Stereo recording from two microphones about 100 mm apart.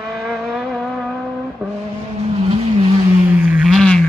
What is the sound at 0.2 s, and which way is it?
Vehicle, centre (ahead or behind).